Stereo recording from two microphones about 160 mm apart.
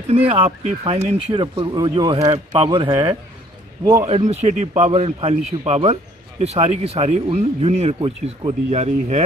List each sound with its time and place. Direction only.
0.1 s speech: 40° right (ahead or behind); by 4.1 s 20° right (ahead or behind)
4.3 s speech: 45° right (ahead or behind)